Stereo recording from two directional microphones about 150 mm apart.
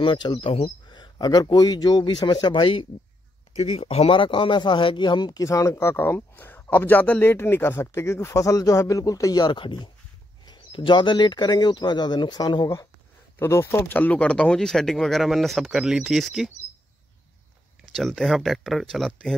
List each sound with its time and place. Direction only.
0.0 s a man's voice: 35° left (ahead or behind); by 16.4 s centre (ahead or behind)
17.8 s speech: centre (ahead or behind)